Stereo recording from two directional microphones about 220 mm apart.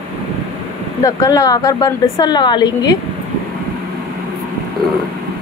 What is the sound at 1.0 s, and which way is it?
A woman's voice, 15° left (ahead or behind).